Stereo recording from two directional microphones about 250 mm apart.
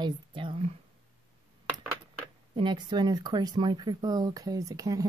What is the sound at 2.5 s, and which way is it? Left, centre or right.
A woman's voice, centre.